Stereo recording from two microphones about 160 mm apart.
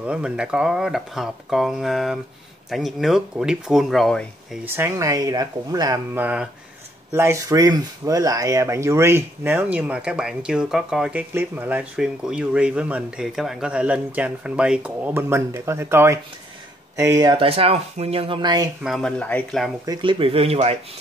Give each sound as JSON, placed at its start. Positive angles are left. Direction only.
{"t": 0.0, "sound": "speech", "side_deg": -5}
{"t": 4.6, "sound": "speech", "side_deg": -15}
{"t": 6.1, "sound": "speech", "side_deg": -10}
{"t": 18.8, "sound": "speech", "side_deg": 0}
{"t": 19.9, "sound": "speech", "side_deg": -30}